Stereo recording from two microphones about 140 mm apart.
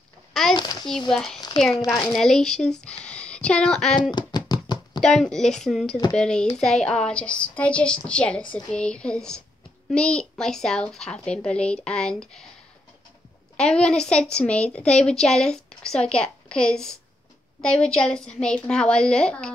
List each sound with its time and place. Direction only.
0.3 s a sound: 5° left (ahead or behind)
1.1 s a woman's voice: 5° left (ahead or behind)
4.1 s a sound: 30° left (ahead or behind)
5.0 s a woman's voice: 5° left (ahead or behind)
8.4 s speech: 35° left (ahead or behind)
8.7 s a woman's voice: 5° left (ahead or behind)
13.6 s a woman's voice: 5° left (ahead or behind)